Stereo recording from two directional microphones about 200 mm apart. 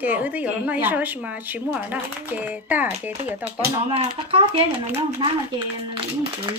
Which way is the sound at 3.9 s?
30° right (ahead or behind).